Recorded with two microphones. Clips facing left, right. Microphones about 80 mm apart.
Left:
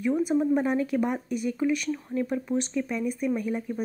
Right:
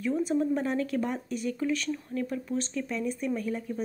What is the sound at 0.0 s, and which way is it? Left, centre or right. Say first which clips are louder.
Speech: left 3 dB; centre.